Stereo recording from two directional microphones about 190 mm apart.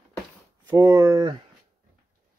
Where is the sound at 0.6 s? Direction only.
15° right (ahead or behind).